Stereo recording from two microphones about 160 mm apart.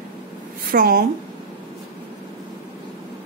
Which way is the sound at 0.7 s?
70° right (ahead or behind).